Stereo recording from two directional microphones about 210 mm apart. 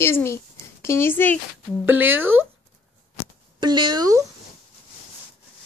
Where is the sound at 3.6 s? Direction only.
20° right (ahead or behind).